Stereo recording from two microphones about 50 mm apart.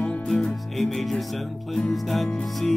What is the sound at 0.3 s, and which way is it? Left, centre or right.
Music, centre.